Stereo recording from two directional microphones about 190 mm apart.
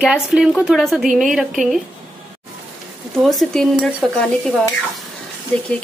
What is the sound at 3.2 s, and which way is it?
A woman's voice, centre (ahead or behind).